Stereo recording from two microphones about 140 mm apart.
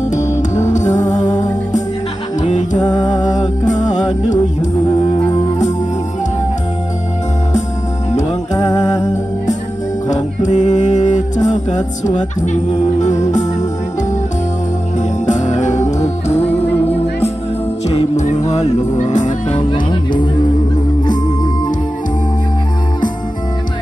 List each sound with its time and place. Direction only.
0.1 s music: 60° left (ahead or behind)
4.8 s music: 35° left (ahead or behind)
10.0 s music: 55° left (ahead or behind)
15.0 s music: 60° left (ahead or behind)
19.5 s jingle bell: 35° left (ahead or behind)